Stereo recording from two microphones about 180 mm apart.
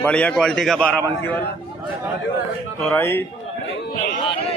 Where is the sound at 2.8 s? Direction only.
10° left (ahead or behind).